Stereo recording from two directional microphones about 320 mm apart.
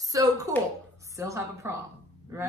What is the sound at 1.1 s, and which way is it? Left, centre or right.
Speech, centre.